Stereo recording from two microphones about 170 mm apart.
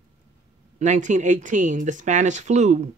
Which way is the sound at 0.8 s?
45° right (ahead or behind).